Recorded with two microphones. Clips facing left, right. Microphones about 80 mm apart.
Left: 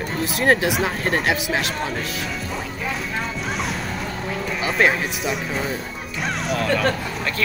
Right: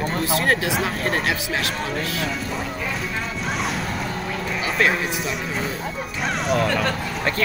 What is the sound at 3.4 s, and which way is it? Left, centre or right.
Boat, centre.